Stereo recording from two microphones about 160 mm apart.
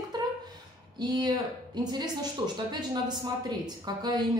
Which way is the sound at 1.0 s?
25° right (ahead or behind).